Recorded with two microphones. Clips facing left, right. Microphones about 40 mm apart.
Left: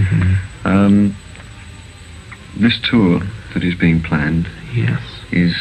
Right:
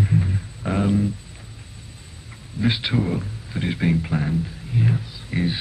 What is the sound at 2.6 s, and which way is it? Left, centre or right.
Speech, left.